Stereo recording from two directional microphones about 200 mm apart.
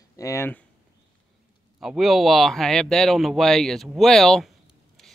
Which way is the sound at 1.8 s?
Centre (ahead or behind).